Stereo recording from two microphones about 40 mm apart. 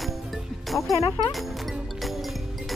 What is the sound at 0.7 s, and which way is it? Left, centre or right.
Speech, centre.